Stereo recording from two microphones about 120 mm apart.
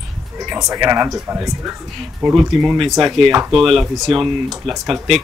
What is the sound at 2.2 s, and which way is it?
Speech, centre (ahead or behind).